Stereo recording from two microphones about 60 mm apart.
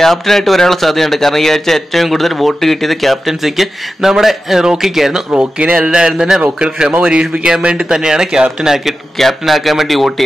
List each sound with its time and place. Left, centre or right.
0.0 s speech: centre
5.3 s speech: right; by 10.2 s centre